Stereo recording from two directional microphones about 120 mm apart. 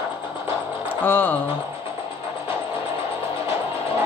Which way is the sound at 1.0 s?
15° left (ahead or behind).